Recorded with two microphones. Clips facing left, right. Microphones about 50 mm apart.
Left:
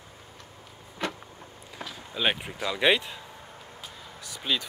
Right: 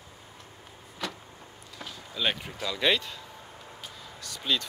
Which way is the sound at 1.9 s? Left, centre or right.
Left.